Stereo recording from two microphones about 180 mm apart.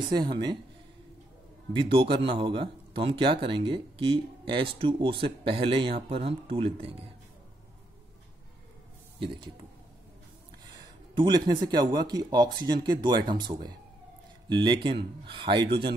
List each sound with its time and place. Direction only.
0.0 s speech: 25° right (ahead or behind)
1.7 s speech: 30° right (ahead or behind)
9.2 s speech: 30° right (ahead or behind)
11.1 s speech: 25° right (ahead or behind)